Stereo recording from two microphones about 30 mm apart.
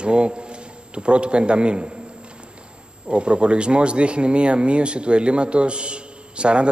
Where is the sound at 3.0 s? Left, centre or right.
Right.